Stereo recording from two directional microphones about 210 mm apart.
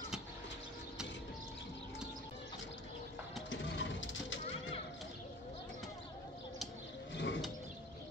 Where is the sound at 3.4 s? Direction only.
60° left (ahead or behind).